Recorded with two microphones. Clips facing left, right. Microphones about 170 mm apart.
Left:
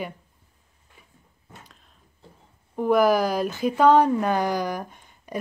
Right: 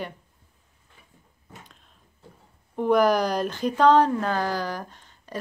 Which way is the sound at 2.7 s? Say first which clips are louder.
Left 1 dB; 5° left (ahead or behind).